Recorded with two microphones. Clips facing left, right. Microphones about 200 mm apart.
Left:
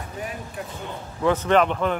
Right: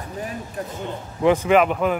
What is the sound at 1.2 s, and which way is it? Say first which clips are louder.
Speech: right 3 dB; 15° right (ahead or behind).